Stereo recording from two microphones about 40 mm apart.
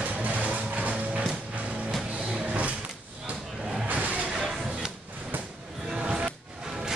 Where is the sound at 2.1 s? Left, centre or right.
Right.